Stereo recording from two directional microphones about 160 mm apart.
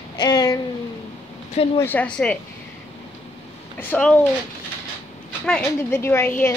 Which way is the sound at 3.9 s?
10° left (ahead or behind).